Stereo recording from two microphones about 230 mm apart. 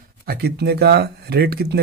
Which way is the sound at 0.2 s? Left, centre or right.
Right.